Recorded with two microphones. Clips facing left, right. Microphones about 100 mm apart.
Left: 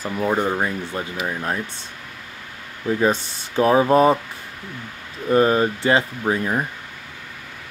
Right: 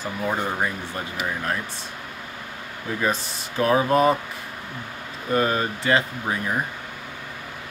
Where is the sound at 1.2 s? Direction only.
20° left (ahead or behind).